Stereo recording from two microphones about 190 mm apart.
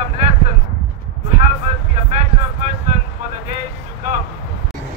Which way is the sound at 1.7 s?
35° right (ahead or behind).